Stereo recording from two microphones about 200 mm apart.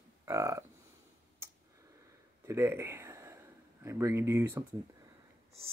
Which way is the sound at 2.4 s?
15° right (ahead or behind).